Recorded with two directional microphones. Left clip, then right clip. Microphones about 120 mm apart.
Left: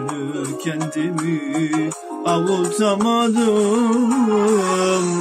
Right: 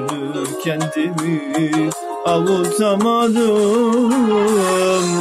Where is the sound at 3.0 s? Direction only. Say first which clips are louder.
Right 2 dB; 10° left (ahead or behind).